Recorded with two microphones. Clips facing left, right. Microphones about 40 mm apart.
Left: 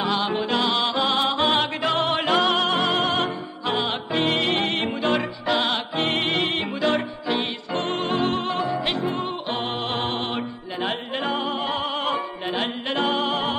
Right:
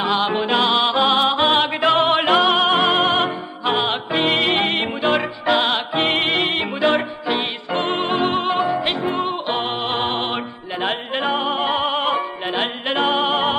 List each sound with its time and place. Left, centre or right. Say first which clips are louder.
0.2 s music: right 4 dB; right
0.8 s music: right 5 dB; centre
1.8 s music: right 6 dB; right
2.8 s music: right 5 dB; right
3.6 s music: right 5 dB; right
11.5 s opera: right 6 dB; right
12.5 s music: right 4 dB; right